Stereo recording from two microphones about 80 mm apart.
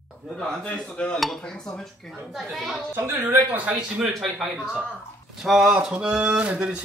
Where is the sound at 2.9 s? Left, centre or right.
Right.